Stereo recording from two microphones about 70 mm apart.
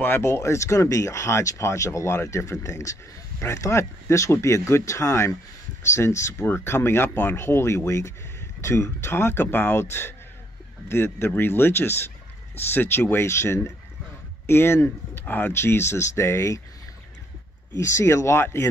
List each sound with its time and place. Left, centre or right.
0.2 s speech: left
17.7 s speech: left